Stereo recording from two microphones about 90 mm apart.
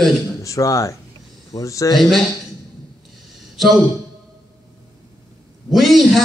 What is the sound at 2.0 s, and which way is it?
Speech, centre (ahead or behind).